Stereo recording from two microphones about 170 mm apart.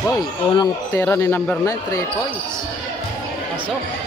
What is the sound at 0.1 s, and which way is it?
Speech, 25° left (ahead or behind).